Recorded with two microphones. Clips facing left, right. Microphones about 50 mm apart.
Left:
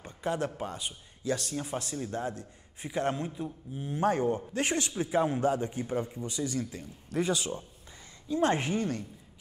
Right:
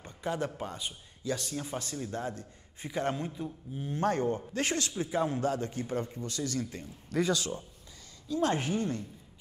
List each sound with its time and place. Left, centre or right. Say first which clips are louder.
0.2 s a man's voice: left 2 dB; left
1.5 s a man's voice: left 2 dB; centre
4.6 s a woman's voice: left 1 dB; left
6.7 s speech: even; centre
7.2 s a woman's voice: even; left